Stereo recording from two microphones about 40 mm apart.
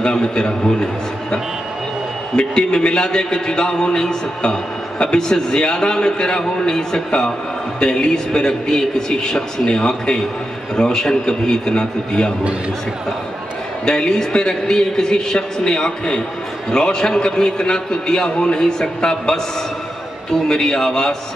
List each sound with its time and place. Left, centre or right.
0.0 s a man's voice: left
2.3 s a man's voice: left
13.8 s a man's voice: centre